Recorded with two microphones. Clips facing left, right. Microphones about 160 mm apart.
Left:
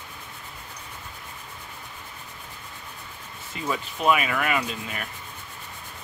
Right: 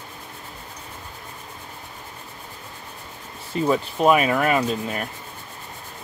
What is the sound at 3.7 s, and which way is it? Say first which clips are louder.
Rub: right 5 dB; 40° right (ahead or behind).